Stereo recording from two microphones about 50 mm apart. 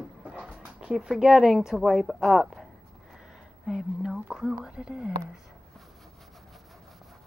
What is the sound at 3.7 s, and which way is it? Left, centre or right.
Speech, centre.